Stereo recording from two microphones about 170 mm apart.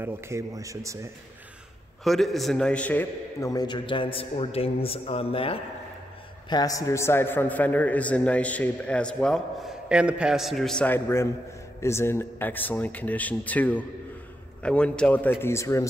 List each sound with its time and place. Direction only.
0.0 s speech: 15° right (ahead or behind)
2.0 s a man's voice: centre (ahead or behind); by 5.6 s 35° left (ahead or behind)
6.5 s a man's voice: 20° left (ahead or behind)